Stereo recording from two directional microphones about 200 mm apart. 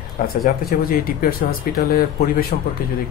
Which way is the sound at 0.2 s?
45° left (ahead or behind).